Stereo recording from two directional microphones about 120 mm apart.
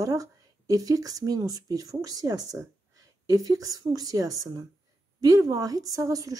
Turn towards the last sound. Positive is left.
turn(degrees=-30)  # may be behind; listen again after turning